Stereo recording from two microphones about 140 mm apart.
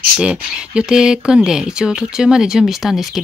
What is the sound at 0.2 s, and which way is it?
Speech, 5° right (ahead or behind).